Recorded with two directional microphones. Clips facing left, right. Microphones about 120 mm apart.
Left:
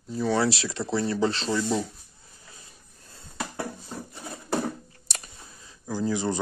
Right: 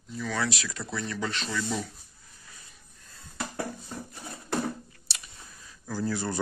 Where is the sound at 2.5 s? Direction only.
25° left (ahead or behind).